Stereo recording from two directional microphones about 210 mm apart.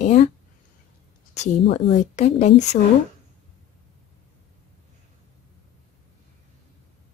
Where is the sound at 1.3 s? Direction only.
30° left (ahead or behind).